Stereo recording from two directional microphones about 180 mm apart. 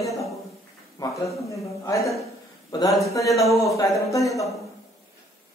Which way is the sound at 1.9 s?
15° left (ahead or behind).